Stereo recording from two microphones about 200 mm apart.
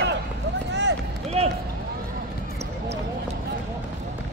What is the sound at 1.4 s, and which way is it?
Run, 30° right (ahead or behind).